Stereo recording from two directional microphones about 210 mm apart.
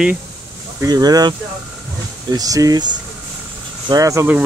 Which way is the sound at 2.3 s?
15° right (ahead or behind).